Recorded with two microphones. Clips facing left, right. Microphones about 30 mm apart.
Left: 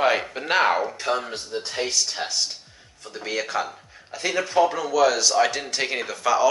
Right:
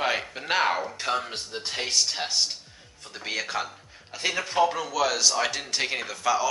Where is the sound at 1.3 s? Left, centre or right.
Right.